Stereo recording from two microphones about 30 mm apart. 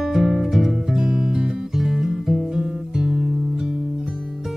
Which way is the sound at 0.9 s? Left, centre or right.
Right.